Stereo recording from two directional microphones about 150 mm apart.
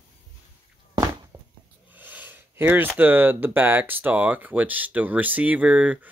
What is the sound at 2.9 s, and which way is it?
Speech, 15° right (ahead or behind).